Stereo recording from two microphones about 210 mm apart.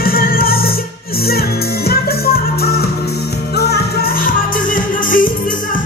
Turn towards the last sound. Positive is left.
turn(degrees=40)  # may be behind; listen again after turning